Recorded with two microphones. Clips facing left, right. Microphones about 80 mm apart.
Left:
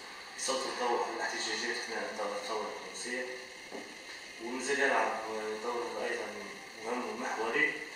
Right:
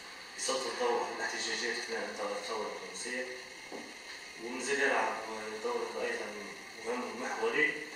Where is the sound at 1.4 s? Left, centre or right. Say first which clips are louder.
Even; centre.